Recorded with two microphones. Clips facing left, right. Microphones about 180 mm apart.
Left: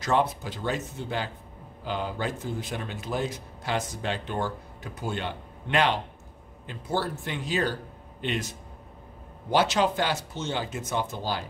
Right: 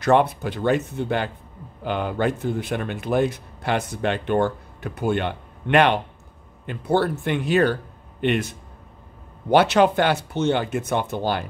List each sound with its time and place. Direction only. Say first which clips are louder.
0.0 s speech: right 7 dB; 60° right (ahead or behind)